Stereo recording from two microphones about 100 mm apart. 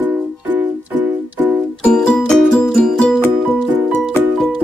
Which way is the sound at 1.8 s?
10° left (ahead or behind).